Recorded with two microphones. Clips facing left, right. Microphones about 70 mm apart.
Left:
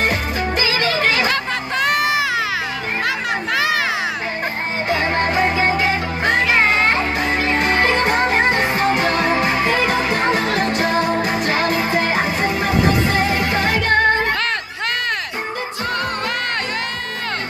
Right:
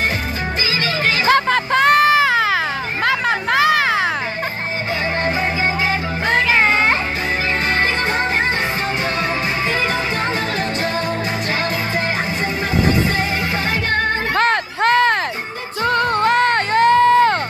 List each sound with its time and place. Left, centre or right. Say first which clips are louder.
0.7 s music: even; left
1.3 s music: right 6 dB; right
3.1 s a sound: right 6 dB; right
7.9 s music: left 3 dB; left
8.2 s music: left 2 dB; centre
9.2 s music: left 4 dB; left
9.9 s music: left 3 dB; left
14.3 s a sound: right 5 dB; right
15.8 s music: right 8 dB; right